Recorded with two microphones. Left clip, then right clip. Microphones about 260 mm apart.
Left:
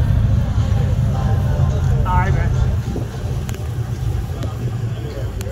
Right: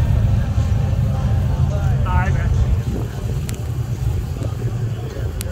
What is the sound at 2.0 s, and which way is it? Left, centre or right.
Vehicle, left.